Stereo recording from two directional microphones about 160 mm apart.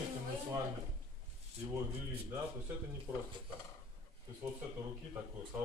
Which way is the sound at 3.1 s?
15° right (ahead or behind).